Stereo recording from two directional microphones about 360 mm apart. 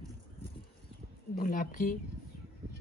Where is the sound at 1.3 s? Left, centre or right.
Left.